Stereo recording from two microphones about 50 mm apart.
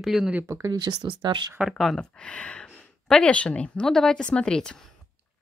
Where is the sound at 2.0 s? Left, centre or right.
Left.